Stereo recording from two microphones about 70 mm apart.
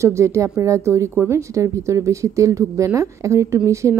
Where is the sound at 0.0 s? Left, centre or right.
Right.